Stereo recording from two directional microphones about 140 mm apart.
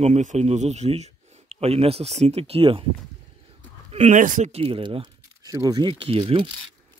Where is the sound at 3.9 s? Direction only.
55° right (ahead or behind).